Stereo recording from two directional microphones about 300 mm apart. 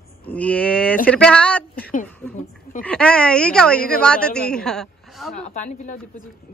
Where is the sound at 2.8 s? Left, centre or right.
Centre.